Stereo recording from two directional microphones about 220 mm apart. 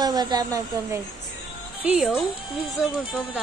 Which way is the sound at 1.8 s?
5° right (ahead or behind).